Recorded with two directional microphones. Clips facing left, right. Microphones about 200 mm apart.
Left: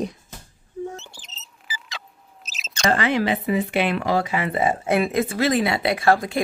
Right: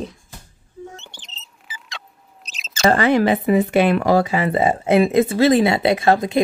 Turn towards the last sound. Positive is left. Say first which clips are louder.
# right 3 dB
turn(degrees=-20)  # may be behind; listen again after turning